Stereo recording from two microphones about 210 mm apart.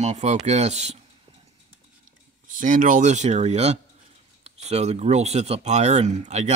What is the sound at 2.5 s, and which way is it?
Speech, 40° right (ahead or behind).